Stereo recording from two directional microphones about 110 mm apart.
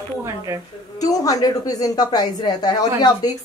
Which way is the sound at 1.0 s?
35° left (ahead or behind).